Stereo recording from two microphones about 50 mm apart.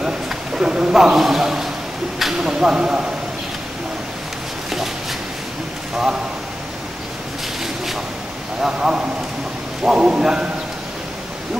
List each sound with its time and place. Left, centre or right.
0.6 s a man's voice: centre
7.6 s a sound: centre
8.5 s a man's voice: centre